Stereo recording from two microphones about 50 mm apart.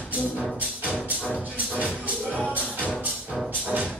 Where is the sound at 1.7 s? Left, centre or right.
Left.